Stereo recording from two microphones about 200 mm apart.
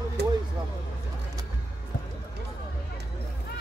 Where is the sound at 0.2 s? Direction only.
55° right (ahead or behind).